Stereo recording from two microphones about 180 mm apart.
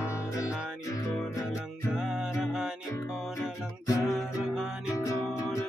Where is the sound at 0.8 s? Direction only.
15° left (ahead or behind).